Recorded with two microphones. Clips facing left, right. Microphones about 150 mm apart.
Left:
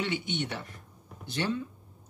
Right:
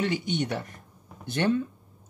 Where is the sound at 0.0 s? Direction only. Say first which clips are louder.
Right 4 dB; 40° right (ahead or behind).